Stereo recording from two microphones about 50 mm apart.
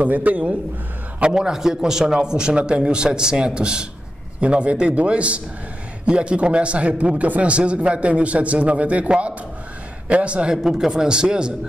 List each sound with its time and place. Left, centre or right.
0.0 s a man's voice: right
1.2 s a man's voice: centre
10.5 s a man's voice: centre